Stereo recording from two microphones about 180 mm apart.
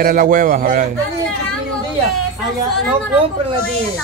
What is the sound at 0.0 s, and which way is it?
Speech, 50° right (ahead or behind).